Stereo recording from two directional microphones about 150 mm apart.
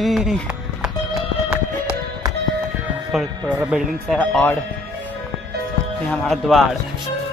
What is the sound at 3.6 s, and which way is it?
Speech, 10° right (ahead or behind).